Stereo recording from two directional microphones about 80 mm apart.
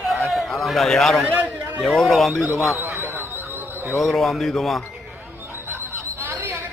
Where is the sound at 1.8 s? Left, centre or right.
Centre.